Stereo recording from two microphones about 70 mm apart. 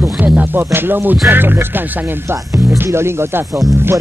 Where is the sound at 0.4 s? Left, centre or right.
Right.